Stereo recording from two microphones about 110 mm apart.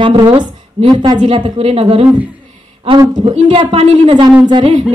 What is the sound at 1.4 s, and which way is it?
Speech, 60° right (ahead or behind).